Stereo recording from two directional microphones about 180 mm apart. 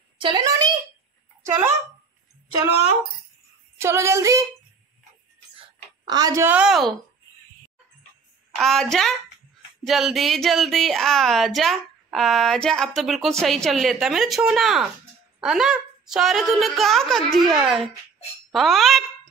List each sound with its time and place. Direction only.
0.2 s a sound: 25° right (ahead or behind)
3.7 s a woman's voice: 15° right (ahead or behind)
6.0 s a woman's voice: 20° right (ahead or behind); by 6.9 s 5° right (ahead or behind)
8.5 s a woman's voice: centre (ahead or behind)
9.8 s speech: centre (ahead or behind)